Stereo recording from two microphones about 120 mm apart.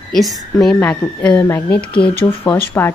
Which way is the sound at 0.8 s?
15° left (ahead or behind).